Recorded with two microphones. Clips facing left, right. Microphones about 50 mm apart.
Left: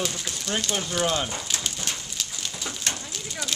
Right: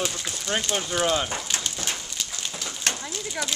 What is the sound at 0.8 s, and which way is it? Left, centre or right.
Speech, centre.